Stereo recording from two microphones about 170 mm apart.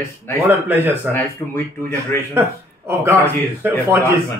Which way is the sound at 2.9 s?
15° right (ahead or behind).